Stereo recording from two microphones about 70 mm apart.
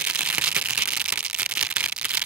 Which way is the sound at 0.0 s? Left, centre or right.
Centre.